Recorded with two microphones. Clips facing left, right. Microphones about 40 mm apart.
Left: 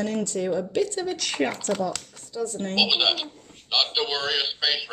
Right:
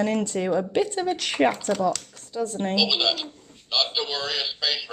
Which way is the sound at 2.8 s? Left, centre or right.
Centre.